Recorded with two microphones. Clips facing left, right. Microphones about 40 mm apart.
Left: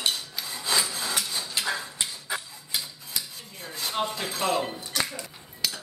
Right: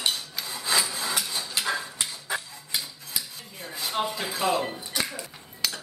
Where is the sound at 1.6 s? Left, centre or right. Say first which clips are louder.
Right 2 dB; right.